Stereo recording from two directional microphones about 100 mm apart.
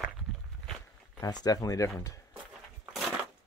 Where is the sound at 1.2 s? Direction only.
40° left (ahead or behind).